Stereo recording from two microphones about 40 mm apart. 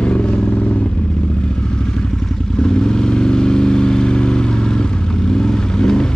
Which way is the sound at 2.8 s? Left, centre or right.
Centre.